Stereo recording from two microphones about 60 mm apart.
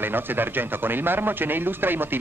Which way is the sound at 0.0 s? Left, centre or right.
Right.